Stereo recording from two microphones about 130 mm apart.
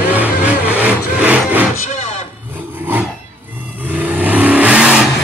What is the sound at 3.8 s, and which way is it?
Vehicle, 10° right (ahead or behind).